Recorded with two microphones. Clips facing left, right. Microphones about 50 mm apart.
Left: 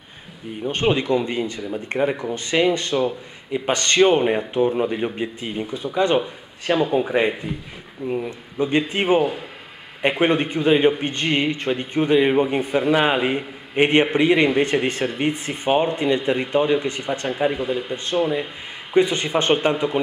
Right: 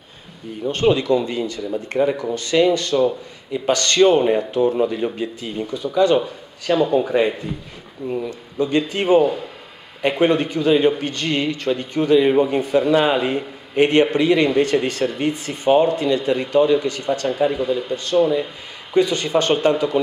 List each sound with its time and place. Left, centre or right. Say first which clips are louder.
0.7 s a man's voice: right 3 dB; left
9.2 s a man's voice: right 4 dB; centre